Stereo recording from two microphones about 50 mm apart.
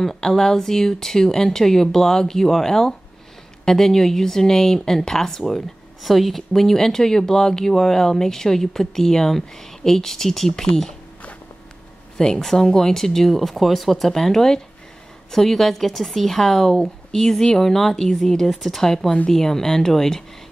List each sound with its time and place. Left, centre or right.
0.0 s speech: centre
12.2 s speech: centre